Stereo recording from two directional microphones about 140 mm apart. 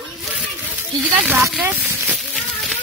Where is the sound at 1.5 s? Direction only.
10° right (ahead or behind).